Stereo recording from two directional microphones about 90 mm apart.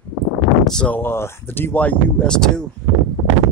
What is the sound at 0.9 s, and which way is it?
Speech, 25° left (ahead or behind).